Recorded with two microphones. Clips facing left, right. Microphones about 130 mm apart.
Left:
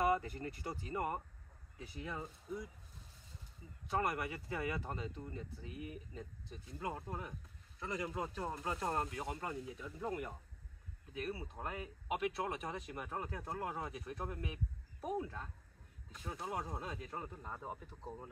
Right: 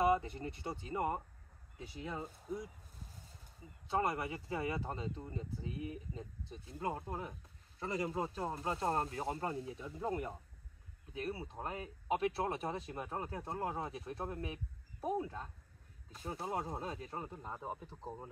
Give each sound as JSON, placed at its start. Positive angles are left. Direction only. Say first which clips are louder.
{"t": 0.0, "sound": "speech", "louder": "right 2 dB", "side_deg": -25}
{"t": 3.8, "sound": "speech", "louder": "right 2 dB", "side_deg": -25}